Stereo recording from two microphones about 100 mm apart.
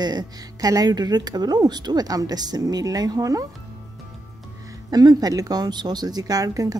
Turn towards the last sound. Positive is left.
turn(degrees=-35)  # may be behind; listen again after turning